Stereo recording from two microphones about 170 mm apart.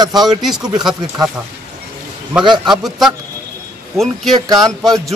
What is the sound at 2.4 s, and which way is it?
Speech, 25° right (ahead or behind).